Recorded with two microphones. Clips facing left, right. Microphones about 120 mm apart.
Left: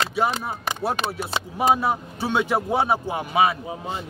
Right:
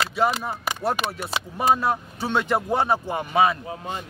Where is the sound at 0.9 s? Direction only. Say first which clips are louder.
Left 1 dB; 35° left (ahead or behind).